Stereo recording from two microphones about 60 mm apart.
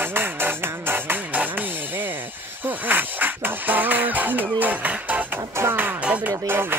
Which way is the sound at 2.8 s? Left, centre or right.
Right.